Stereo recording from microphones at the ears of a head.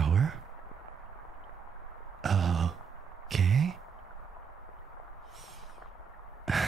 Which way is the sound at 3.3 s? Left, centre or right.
Right.